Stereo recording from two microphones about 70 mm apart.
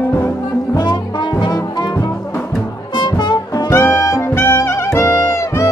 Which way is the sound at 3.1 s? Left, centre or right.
Left.